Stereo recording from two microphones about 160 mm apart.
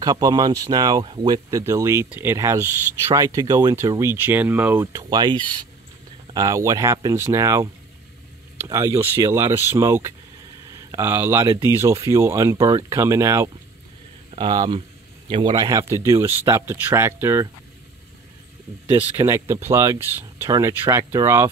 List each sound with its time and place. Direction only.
0.0 s speech: 25° right (ahead or behind)
4.9 s speech: 25° right (ahead or behind)
14.3 s speech: 30° right (ahead or behind)
19.1 s speech: 15° right (ahead or behind)